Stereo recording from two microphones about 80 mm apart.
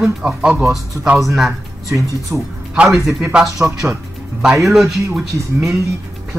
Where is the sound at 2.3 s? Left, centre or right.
Centre.